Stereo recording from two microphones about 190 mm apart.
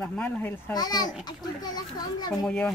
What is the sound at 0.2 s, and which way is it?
Speech, 10° left (ahead or behind).